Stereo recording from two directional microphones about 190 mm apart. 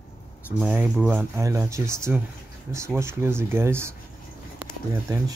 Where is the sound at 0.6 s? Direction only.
5° right (ahead or behind).